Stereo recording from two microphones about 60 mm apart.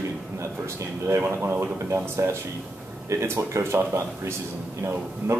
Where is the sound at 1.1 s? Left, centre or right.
Right.